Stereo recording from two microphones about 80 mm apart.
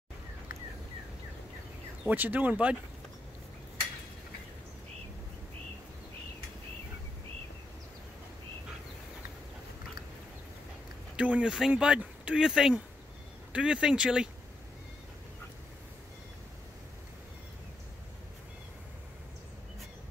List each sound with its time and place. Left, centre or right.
2.0 s speech: right
11.1 s speech: centre